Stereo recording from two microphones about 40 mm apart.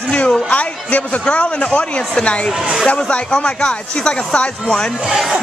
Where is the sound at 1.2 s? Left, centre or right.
Left.